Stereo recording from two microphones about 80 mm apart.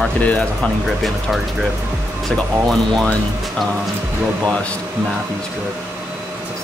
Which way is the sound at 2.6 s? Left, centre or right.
Centre.